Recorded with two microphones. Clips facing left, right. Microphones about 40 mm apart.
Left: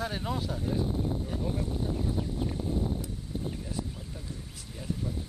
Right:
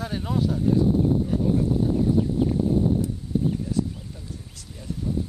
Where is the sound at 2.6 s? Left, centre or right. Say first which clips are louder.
Right 8 dB; centre.